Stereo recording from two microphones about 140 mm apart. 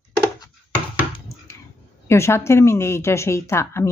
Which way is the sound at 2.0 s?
20° left (ahead or behind).